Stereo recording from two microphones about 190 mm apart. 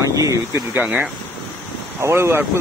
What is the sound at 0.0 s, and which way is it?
Speech, 15° right (ahead or behind).